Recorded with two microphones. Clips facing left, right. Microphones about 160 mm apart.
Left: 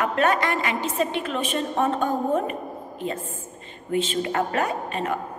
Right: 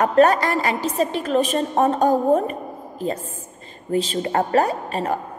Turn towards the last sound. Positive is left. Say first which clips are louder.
# right 3 dB
turn(degrees=-35)  # may be behind; listen again after turning